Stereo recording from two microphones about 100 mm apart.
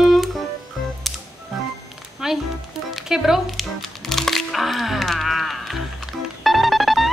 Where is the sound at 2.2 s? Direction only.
5° right (ahead or behind).